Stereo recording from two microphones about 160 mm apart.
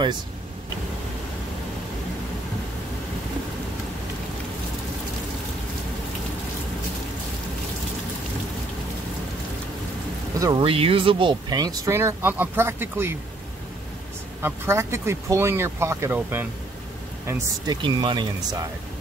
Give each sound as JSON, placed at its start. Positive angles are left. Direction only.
{"t": 10.6, "sound": "speech", "side_deg": -35}
{"t": 14.4, "sound": "speech", "side_deg": -15}
{"t": 17.8, "sound": "speech", "side_deg": -30}